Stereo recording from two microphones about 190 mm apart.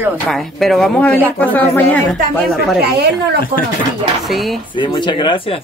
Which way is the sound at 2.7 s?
55° right (ahead or behind).